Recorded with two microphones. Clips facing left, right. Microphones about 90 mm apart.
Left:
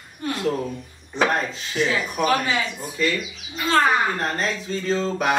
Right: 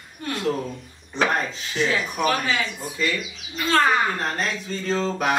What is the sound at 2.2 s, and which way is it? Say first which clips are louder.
Speech: left 2 dB; 15° left (ahead or behind).